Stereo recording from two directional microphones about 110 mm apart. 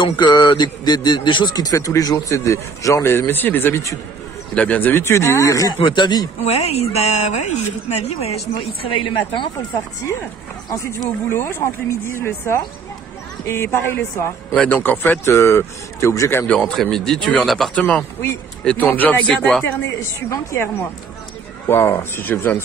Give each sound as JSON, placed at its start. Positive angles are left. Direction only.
{"t": 0.0, "sound": "a man's voice", "side_deg": 45}
{"t": 5.8, "sound": "speech", "side_deg": 45}
{"t": 6.4, "sound": "speech", "side_deg": 75}
{"t": 9.3, "sound": "speech", "side_deg": 45}
{"t": 10.7, "sound": "a man's voice", "side_deg": 30}
{"t": 14.5, "sound": "a man's voice", "side_deg": 15}
{"t": 16.5, "sound": "speech", "side_deg": 10}
{"t": 17.8, "sound": "speech", "side_deg": 20}
{"t": 19.6, "sound": "a man's voice", "side_deg": 25}